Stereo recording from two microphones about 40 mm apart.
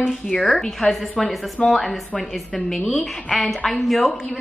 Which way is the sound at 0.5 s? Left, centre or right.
Centre.